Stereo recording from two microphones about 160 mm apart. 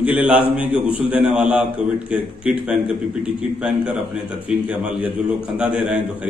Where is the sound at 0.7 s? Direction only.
35° left (ahead or behind).